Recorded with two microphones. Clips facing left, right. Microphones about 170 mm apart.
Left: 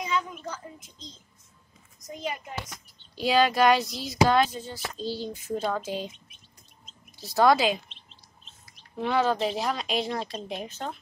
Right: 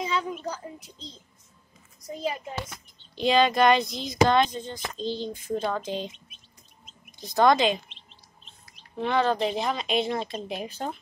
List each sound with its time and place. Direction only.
0.0 s a child's voice: 30° right (ahead or behind)
3.2 s speech: 5° left (ahead or behind)
7.3 s speech: 5° left (ahead or behind)
8.9 s speech: 5° left (ahead or behind); by 11.0 s 10° right (ahead or behind)